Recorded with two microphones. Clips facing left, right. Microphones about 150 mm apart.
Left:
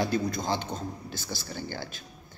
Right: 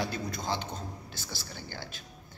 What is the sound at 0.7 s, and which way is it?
Speech, 40° left (ahead or behind).